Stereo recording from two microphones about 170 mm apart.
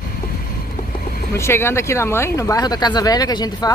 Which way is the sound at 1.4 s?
15° left (ahead or behind).